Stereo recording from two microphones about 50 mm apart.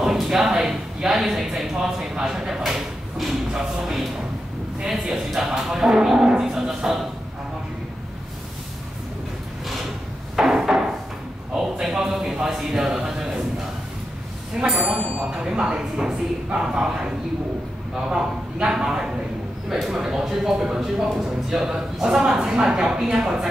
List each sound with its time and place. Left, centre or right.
0.0 s speech: centre
10.3 s a sound: centre
11.7 s speech: centre
14.6 s speech: centre
15.0 s speech: centre